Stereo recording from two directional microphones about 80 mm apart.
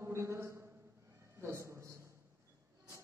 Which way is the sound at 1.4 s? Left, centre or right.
Right.